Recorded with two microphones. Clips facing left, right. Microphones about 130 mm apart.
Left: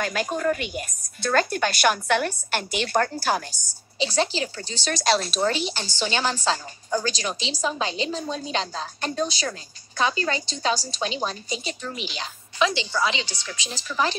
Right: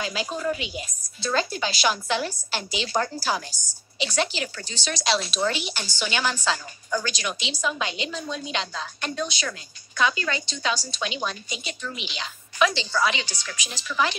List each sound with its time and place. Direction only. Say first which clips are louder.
0.0 s a woman's voice: left 3 dB; 50° left (ahead or behind)
4.0 s a woman's voice: left 3 dB; 30° left (ahead or behind)
4.8 s speech: left 3 dB; 50° left (ahead or behind)
5.6 s a woman's voice: left 3 dB; 30° left (ahead or behind)
12.5 s a woman's voice: even; 25° left (ahead or behind)